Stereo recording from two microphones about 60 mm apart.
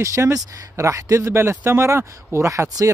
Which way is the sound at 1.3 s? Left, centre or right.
Right.